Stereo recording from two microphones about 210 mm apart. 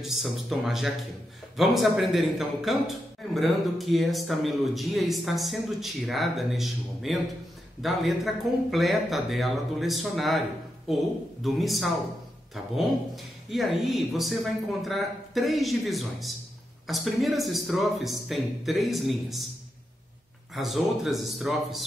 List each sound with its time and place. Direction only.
0.0 s a man's voice: centre (ahead or behind)
20.5 s a man's voice: centre (ahead or behind)